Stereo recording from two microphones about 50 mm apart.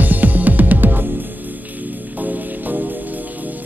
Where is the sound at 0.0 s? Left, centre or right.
Right.